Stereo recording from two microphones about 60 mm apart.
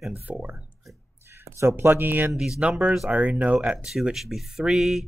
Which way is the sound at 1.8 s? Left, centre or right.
Right.